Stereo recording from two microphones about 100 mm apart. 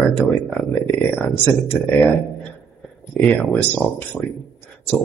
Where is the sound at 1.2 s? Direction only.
20° left (ahead or behind).